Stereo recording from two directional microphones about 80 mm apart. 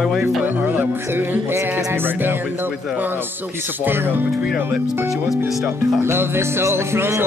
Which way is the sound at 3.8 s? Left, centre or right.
Right.